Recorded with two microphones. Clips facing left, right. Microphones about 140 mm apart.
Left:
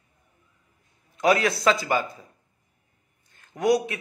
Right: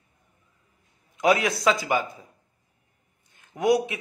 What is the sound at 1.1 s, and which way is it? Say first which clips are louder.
Speech: even; 15° right (ahead or behind).